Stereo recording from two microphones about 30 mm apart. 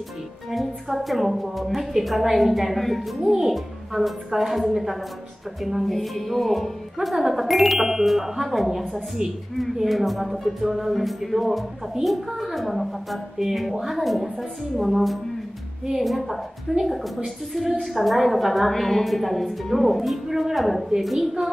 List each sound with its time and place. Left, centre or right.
0.5 s a woman's voice: centre
3.2 s a child's voice: centre
3.4 s a woman's voice: centre
7.3 s music: centre
8.0 s a woman's voice: centre